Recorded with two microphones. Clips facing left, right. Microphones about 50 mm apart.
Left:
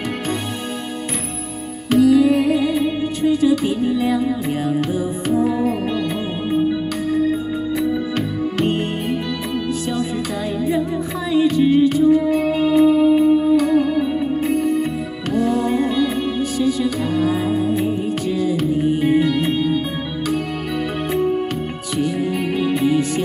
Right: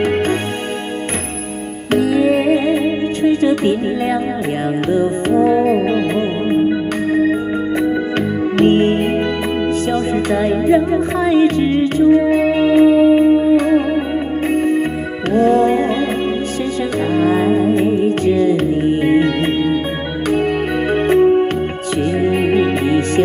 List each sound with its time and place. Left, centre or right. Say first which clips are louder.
1.9 s music: left 1 dB; right
8.2 s music: right 6 dB; right
15.3 s music: right 6 dB; right
17.2 s music: right 6 dB; right
20.9 s music: right 10 dB; right